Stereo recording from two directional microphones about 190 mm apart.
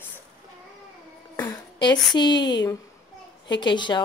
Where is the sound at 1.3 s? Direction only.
20° left (ahead or behind).